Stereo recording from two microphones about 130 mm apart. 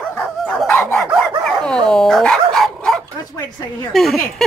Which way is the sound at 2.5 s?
Centre (ahead or behind).